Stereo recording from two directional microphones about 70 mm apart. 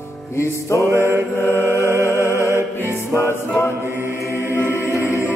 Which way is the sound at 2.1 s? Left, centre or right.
Left.